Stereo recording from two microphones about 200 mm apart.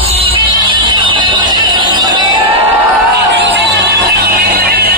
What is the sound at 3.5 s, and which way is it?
Music, 55° right (ahead or behind).